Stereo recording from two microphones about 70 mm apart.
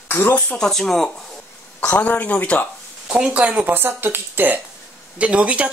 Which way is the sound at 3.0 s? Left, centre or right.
Centre.